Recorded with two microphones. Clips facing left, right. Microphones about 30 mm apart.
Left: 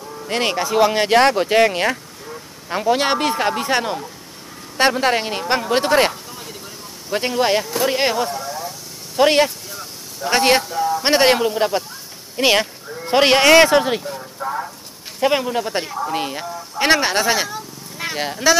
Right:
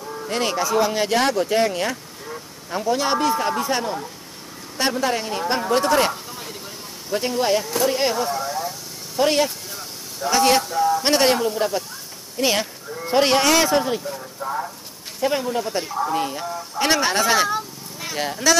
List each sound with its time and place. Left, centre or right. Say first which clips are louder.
0.3 s a man's voice: left 2 dB; left
8.3 s a sound: right 2 dB; centre
9.2 s speech: left 4 dB; left
9.7 s vehicle: left 1 dB; centre
10.3 s a man's voice: left 2 dB; left
10.6 s speech: right 1 dB; centre
11.0 s a man's voice: left 8 dB; left
14.0 s speech: left 2 dB; centre
15.1 s speech: left 4 dB; left
15.4 s a man's voice: left 2 dB; left; by 18.6 s centre